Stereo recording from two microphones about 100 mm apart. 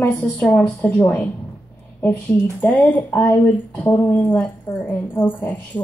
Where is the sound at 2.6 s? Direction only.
20° left (ahead or behind).